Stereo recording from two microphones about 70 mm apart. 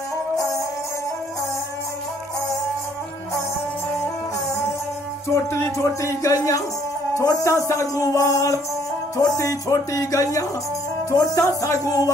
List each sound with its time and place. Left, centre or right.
5.3 s speech: left